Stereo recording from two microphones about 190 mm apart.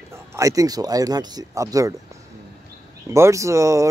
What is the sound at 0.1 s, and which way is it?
Speech, 15° right (ahead or behind).